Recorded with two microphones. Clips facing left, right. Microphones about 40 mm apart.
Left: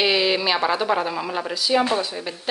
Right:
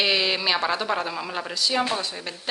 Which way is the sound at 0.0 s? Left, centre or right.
Centre.